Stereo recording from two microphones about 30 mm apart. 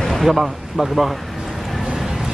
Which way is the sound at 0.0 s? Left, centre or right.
Centre.